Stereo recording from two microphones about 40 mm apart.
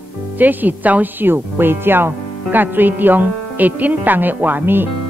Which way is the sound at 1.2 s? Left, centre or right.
Right.